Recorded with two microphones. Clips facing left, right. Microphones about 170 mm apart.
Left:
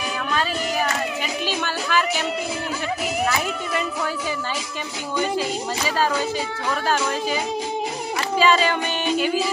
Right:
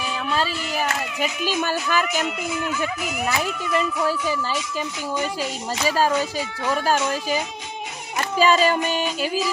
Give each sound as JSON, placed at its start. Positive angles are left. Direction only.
{"t": 1.6, "sound": "speech", "side_deg": -45}
{"t": 8.4, "sound": "music", "side_deg": -40}